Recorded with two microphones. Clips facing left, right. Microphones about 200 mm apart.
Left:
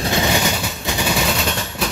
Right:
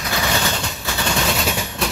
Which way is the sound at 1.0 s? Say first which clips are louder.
Left 1 dB; 10° left (ahead or behind).